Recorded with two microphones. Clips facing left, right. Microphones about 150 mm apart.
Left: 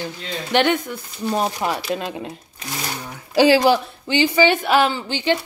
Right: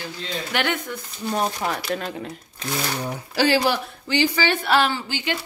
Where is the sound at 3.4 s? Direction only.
20° left (ahead or behind).